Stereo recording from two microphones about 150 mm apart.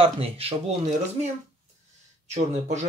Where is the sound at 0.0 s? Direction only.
40° right (ahead or behind).